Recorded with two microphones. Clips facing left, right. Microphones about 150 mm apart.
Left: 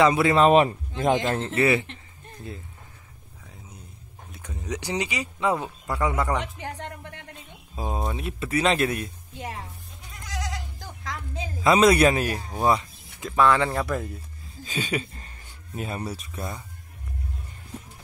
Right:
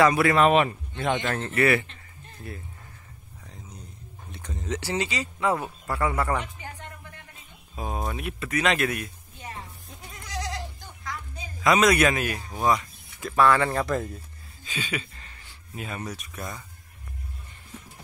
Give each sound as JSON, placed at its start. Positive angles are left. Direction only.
{"t": 0.0, "sound": "a man's voice", "side_deg": 20}
{"t": 1.4, "sound": "a man's voice", "side_deg": 25}
{"t": 4.3, "sound": "speech", "side_deg": 5}
{"t": 6.4, "sound": "a sound", "side_deg": 75}
{"t": 7.7, "sound": "a man's voice", "side_deg": 25}
{"t": 11.1, "sound": "a sound", "side_deg": 90}
{"t": 11.6, "sound": "speech", "side_deg": 30}
{"t": 13.4, "sound": "speech", "side_deg": 15}
{"t": 13.7, "sound": "speech", "side_deg": 5}
{"t": 14.6, "sound": "speech", "side_deg": 40}